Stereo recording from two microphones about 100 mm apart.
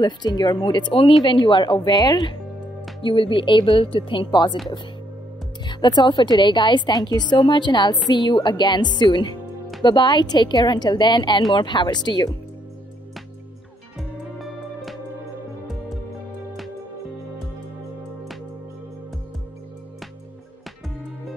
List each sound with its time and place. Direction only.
0.0 s a woman's voice: 45° left (ahead or behind)
3.0 s speech: 60° left (ahead or behind)
4.3 s a woman's voice: 45° left (ahead or behind)
5.7 s a woman's voice: 45° left (ahead or behind)
13.9 s music: centre (ahead or behind)